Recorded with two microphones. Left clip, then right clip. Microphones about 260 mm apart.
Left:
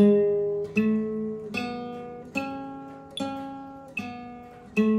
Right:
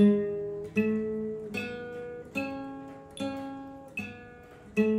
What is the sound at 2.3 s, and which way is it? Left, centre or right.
Music, centre.